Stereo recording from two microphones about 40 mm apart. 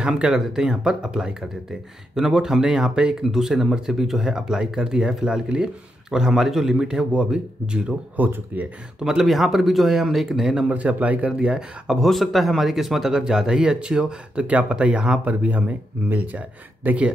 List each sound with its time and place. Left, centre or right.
0.0 s speech: right
8.2 s speech: right
9.0 s speech: centre
10.7 s speech: right
11.3 s speech: centre
12.1 s speech: centre
14.5 s speech: right
14.8 s speech: right
15.2 s speech: right